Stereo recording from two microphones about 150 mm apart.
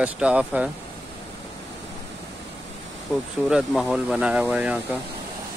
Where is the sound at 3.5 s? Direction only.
5° right (ahead or behind).